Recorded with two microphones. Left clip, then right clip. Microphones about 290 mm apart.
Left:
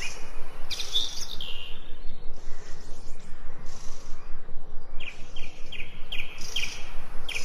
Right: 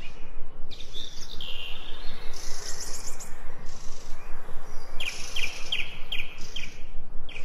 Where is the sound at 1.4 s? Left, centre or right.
Centre.